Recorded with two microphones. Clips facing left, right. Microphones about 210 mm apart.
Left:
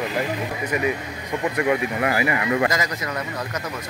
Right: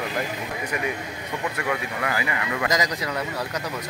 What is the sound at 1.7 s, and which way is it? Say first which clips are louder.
Speech: left 5 dB; 25° left (ahead or behind).